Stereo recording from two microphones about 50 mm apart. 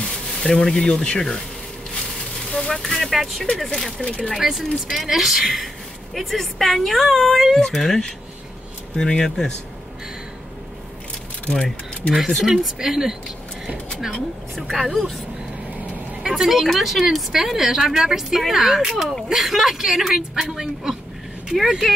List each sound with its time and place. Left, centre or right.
0.4 s speech: centre
1.0 s speech: centre
2.5 s speech: centre
4.0 s speech: centre
4.4 s a woman's voice: centre
11.4 s speech: left
12.4 s a woman's voice: centre
14.5 s a woman's voice: centre
16.2 s a woman's voice: centre